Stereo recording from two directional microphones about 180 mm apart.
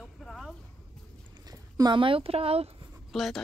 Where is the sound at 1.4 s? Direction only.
20° right (ahead or behind).